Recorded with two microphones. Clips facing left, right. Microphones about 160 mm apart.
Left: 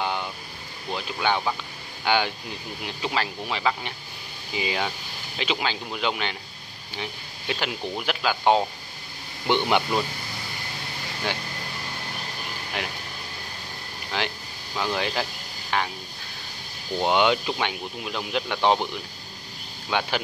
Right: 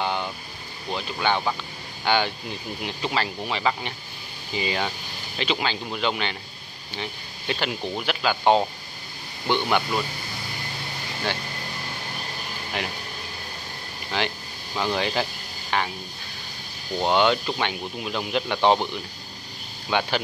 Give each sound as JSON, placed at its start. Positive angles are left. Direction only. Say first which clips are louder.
{"t": 0.0, "sound": "vehicle", "louder": "right 1 dB", "side_deg": 5}
{"t": 0.9, "sound": "speech", "louder": "right 1 dB", "side_deg": 5}
{"t": 9.7, "sound": "speech", "louder": "left 1 dB", "side_deg": 20}
{"t": 14.1, "sound": "speech", "louder": "right 2 dB", "side_deg": 0}
{"t": 17.0, "sound": "speech", "louder": "right 1 dB", "side_deg": 10}
{"t": 19.9, "sound": "speech", "louder": "right 2 dB", "side_deg": 5}